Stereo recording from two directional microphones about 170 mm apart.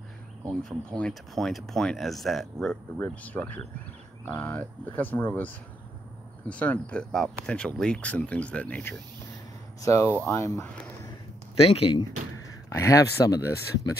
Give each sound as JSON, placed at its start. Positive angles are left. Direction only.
{"t": 0.9, "sound": "speech", "side_deg": 5}
{"t": 9.8, "sound": "speech", "side_deg": 20}
{"t": 11.6, "sound": "speech", "side_deg": 35}
{"t": 12.6, "sound": "speech", "side_deg": 20}